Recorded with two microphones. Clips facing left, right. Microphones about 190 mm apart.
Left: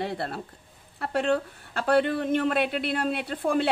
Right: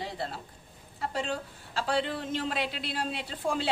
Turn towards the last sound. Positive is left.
turn(degrees=60)  # may be behind; listen again after turning